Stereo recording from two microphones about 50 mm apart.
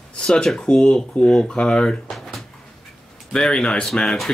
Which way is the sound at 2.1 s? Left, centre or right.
Centre.